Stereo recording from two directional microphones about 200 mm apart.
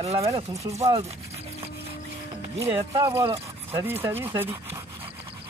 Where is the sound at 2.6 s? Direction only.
20° right (ahead or behind).